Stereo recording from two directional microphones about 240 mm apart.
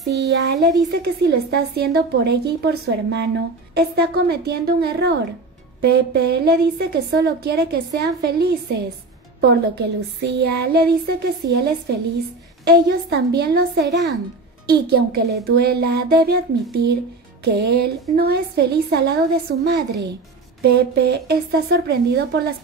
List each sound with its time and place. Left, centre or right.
0.1 s a woman's voice: right
17.4 s a woman's voice: right